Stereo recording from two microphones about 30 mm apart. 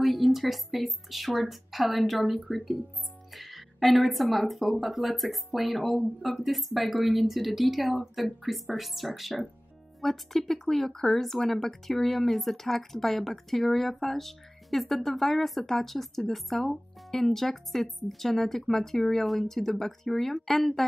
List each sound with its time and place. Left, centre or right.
0.0 s speech: centre